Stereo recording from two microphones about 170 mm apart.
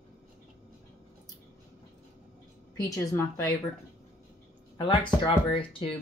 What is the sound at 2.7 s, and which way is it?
Speech, 20° left (ahead or behind).